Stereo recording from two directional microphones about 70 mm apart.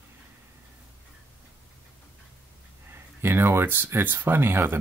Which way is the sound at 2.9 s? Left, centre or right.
Right.